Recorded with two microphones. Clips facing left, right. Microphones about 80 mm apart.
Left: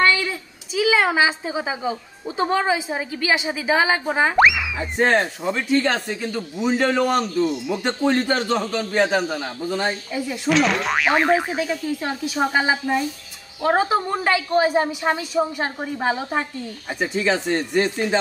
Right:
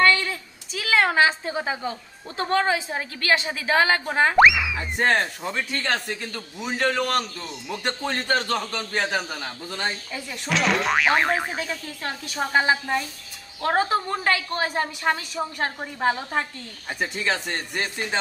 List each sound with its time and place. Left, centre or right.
0.0 s a woman's voice: centre
9.4 s a woman's voice: centre
10.5 s a woman's voice: centre